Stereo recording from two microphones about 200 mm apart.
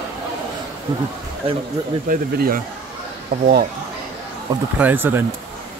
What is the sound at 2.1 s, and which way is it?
Speech, 45° right (ahead or behind).